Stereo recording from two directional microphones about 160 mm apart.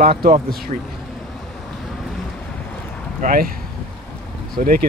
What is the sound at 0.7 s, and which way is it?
Speech, 45° right (ahead or behind).